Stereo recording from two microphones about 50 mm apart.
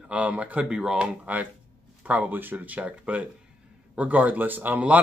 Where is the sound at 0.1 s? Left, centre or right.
Right.